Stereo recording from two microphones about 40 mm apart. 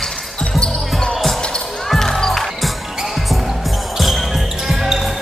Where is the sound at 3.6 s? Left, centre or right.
Centre.